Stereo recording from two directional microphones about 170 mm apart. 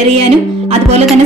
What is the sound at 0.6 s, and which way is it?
Music, 40° right (ahead or behind).